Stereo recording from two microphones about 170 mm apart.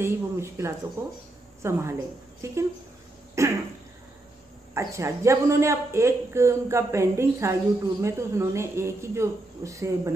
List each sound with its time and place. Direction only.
0.0 s speech: 15° right (ahead or behind)
3.4 s cough: 15° right (ahead or behind)
4.7 s speech: 15° right (ahead or behind)